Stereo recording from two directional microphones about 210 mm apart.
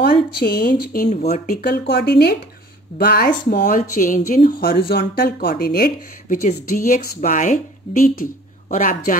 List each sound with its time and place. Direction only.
0.4 s speech: 45° left (ahead or behind)
1.5 s a woman's voice: 50° left (ahead or behind)